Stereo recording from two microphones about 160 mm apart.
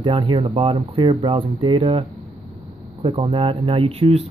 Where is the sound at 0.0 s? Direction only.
35° right (ahead or behind).